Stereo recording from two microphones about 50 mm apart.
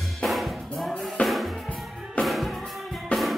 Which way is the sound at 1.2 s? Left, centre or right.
Left.